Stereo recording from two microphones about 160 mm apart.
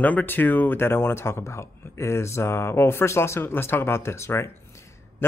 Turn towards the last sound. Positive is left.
turn(degrees=15)  # may be behind; listen again after turning